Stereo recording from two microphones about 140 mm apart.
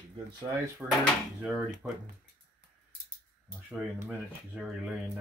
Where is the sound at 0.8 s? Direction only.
15° right (ahead or behind).